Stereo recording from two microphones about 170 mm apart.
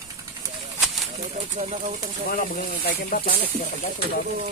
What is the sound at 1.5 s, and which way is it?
Speech, 45° right (ahead or behind).